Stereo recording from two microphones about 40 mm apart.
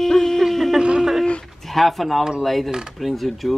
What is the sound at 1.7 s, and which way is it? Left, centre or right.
A man's voice, centre.